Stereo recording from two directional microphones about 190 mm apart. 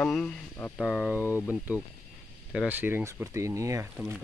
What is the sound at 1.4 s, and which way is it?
Speech, 5° right (ahead or behind).